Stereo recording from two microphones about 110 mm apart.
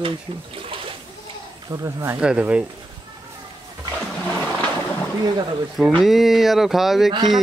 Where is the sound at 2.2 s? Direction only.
10° right (ahead or behind).